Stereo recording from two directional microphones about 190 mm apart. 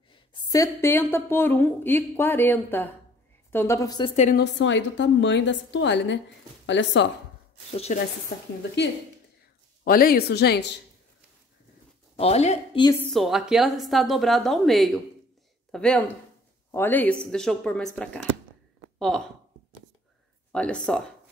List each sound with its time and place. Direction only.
0.1 s speech: 25° left (ahead or behind)
4.4 s a woman's voice: 70° left (ahead or behind)
7.7 s a woman's voice: 35° left (ahead or behind)
9.8 s speech: 50° left (ahead or behind)
12.2 s a woman's voice: 35° left (ahead or behind)
13.1 s a woman's voice: centre (ahead or behind)
20.5 s a woman's voice: 5° left (ahead or behind)